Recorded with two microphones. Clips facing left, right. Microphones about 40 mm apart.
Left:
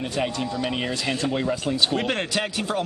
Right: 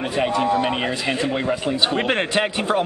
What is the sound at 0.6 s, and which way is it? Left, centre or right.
Speech, right.